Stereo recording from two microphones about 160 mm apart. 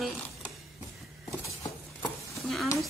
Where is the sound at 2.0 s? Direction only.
Centre (ahead or behind).